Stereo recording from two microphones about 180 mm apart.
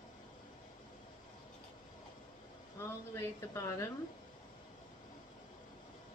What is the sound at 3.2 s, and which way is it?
Speech, 15° left (ahead or behind).